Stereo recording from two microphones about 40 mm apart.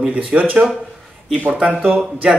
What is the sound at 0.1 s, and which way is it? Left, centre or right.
Speech, right.